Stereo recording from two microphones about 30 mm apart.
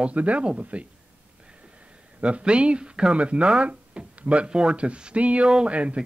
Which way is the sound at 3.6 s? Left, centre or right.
Right.